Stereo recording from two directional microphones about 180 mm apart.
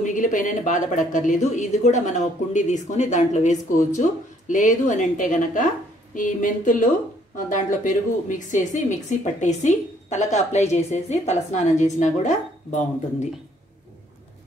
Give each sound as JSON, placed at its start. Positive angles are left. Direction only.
{"t": 0.0, "sound": "a woman's voice", "side_deg": 45}